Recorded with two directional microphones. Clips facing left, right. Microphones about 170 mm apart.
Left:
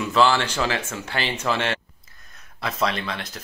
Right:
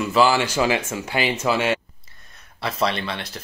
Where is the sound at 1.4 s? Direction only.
10° right (ahead or behind).